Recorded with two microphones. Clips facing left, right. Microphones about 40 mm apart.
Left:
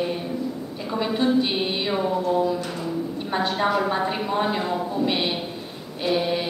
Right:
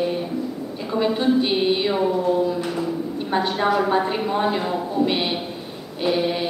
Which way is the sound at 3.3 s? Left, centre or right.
Centre.